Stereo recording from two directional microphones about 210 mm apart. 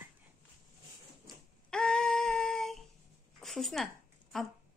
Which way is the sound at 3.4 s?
Centre (ahead or behind).